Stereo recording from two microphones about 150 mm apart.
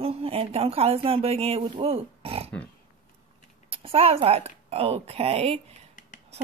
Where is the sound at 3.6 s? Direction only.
40° right (ahead or behind).